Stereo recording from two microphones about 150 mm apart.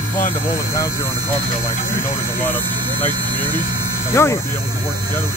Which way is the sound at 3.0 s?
30° right (ahead or behind).